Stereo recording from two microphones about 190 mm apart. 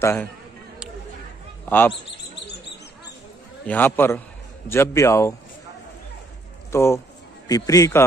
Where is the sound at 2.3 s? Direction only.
65° left (ahead or behind).